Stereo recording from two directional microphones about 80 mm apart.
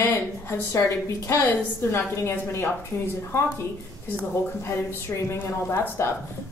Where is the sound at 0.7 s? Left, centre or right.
Left.